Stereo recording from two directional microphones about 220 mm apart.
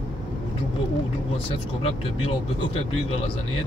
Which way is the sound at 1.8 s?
25° left (ahead or behind).